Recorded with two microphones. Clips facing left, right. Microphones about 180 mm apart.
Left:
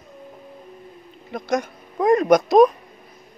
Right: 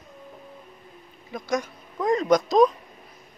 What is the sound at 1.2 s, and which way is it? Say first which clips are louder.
A woman's voice: left 4 dB; 60° left (ahead or behind).